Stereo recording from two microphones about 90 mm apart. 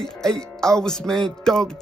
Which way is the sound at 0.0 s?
5° left (ahead or behind).